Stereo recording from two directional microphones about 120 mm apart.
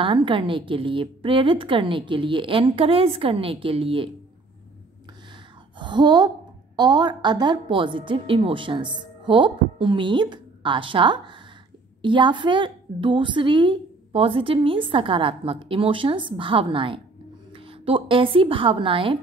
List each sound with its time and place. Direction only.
0.0 s a woman's voice: 45° right (ahead or behind)
5.8 s a woman's voice: 40° right (ahead or behind)